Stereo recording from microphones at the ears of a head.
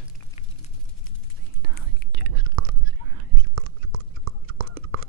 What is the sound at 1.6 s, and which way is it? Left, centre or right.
Whispering, right.